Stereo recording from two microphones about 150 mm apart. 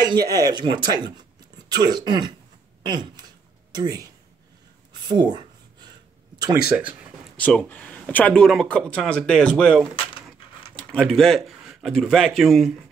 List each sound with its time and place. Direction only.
0.3 s speech: 25° right (ahead or behind)
2.8 s a sound: 30° right (ahead or behind)
3.7 s speech: 25° right (ahead or behind)
7.3 s speech: 10° left (ahead or behind)
10.1 s a sound: 10° right (ahead or behind)
10.8 s speech: 10° left (ahead or behind)